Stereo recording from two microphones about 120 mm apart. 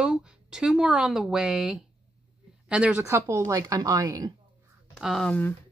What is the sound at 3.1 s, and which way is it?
Speech, 20° right (ahead or behind).